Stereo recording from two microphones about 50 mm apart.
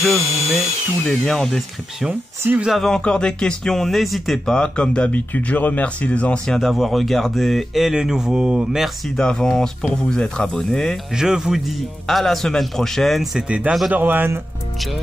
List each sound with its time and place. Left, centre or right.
0.0 s drill: centre
1.0 s speech: centre
2.9 s speech: centre
3.6 s speech: centre
4.5 s speech: centre
5.1 s speech: left
6.4 s speech: centre
6.7 s speech: centre
8.8 s speech: centre
11.1 s a man's voice: centre
11.6 s speech: centre
13.4 s speech: centre
13.9 s a man's voice: right